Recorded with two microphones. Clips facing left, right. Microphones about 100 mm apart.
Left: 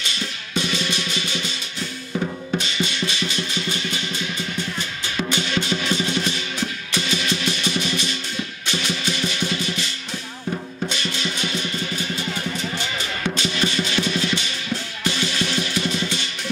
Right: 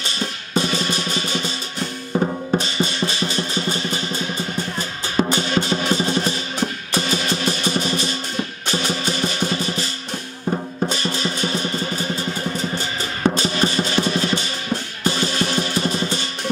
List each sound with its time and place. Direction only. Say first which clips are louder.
0.0 s music: right 3 dB; 40° right (ahead or behind)